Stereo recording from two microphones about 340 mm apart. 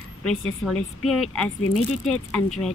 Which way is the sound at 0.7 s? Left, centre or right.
Left.